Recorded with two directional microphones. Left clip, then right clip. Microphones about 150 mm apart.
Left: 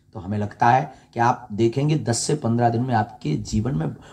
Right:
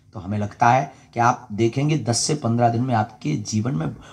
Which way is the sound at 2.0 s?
15° left (ahead or behind).